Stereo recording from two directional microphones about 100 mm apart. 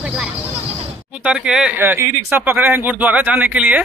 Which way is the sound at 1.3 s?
5° right (ahead or behind).